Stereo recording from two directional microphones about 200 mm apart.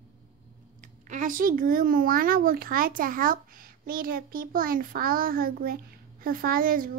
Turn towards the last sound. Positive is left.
turn(degrees=-45)  # may be behind; listen again after turning